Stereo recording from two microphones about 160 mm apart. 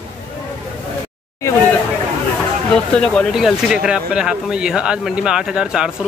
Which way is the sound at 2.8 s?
5° left (ahead or behind).